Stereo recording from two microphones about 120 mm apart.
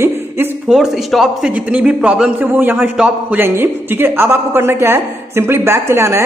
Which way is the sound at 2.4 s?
15° right (ahead or behind).